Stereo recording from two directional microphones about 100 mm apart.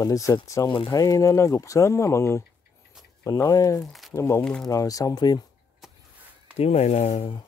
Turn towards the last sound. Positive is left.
turn(degrees=90)